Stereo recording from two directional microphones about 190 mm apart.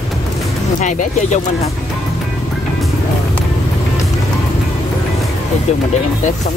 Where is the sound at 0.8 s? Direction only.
40° left (ahead or behind).